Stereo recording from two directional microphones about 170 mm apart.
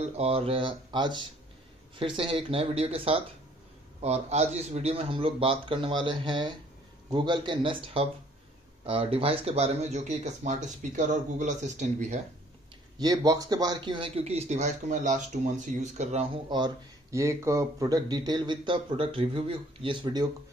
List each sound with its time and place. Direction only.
0.0 s speech: 35° right (ahead or behind)
13.0 s speech: 20° right (ahead or behind); by 16.3 s 40° right (ahead or behind)
16.4 s speech: 25° right (ahead or behind)